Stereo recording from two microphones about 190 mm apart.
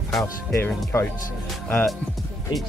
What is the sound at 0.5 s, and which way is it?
Speech, 10° left (ahead or behind).